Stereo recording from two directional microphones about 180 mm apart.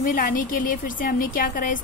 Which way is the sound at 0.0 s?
50° left (ahead or behind).